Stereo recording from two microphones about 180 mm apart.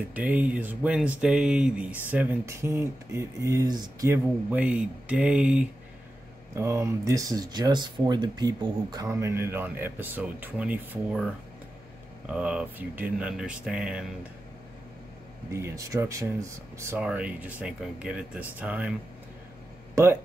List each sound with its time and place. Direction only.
0.1 s speech: 10° right (ahead or behind)
12.3 s speech: 5° right (ahead or behind)
15.5 s speech: 15° right (ahead or behind)